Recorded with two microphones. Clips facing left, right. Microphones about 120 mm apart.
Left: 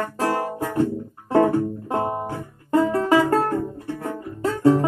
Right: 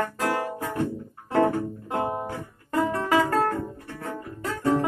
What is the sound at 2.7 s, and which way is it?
Music, 30° left (ahead or behind).